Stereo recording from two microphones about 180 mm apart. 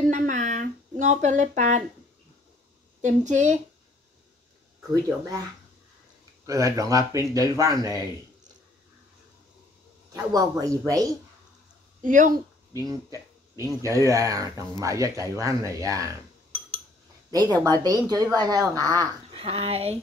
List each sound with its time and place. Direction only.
0.1 s a sound: 45° right (ahead or behind)
3.0 s a woman's voice: 45° right (ahead or behind)
6.4 s speech: 20° right (ahead or behind)
10.1 s speech: 20° right (ahead or behind)
12.0 s a woman's voice: 45° right (ahead or behind)
12.7 s speech: 20° right (ahead or behind)
17.3 s speech: 20° right (ahead or behind)
19.3 s speech: 35° right (ahead or behind)